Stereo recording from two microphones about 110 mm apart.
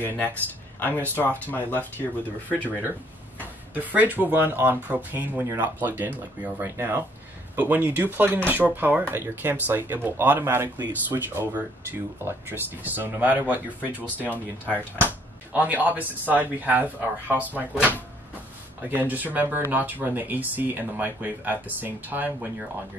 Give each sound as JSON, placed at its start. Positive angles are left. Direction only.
{"t": 0.7, "sound": "speech", "side_deg": 15}
{"t": 3.3, "sound": "speech", "side_deg": -15}
{"t": 14.3, "sound": "speech", "side_deg": 15}
{"t": 15.5, "sound": "speech", "side_deg": -15}